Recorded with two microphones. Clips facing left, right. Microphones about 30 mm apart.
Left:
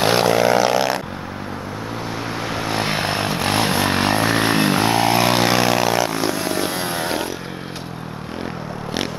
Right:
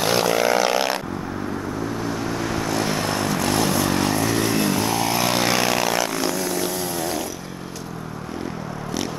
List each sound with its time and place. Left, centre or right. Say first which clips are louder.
0.0 s vehicle: left 3 dB; left
2.0 s vehicle: even; left